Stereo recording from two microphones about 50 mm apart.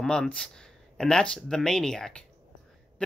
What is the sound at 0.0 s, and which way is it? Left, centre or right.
Speech, centre.